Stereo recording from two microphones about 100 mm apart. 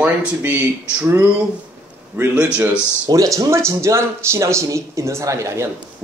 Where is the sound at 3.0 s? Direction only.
35° right (ahead or behind).